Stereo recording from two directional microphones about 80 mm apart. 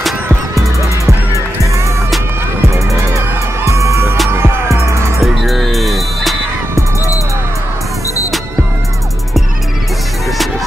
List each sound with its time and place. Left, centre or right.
0.6 s music: right
2.7 s music: right
5.2 s music: centre